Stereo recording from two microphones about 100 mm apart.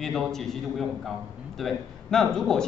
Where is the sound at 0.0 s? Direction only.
5° left (ahead or behind).